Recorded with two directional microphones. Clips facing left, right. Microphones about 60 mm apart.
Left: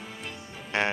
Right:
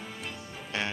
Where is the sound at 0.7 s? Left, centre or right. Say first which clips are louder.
Left 6 dB; left.